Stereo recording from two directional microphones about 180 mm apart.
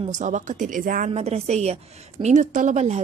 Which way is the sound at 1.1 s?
35° right (ahead or behind).